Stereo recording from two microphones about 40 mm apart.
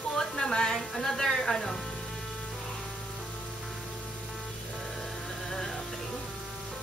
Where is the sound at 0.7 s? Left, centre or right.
Centre.